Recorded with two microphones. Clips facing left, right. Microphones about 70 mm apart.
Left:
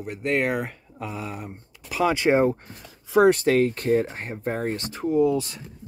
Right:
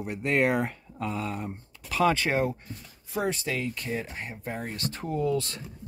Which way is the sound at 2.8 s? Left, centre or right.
Left.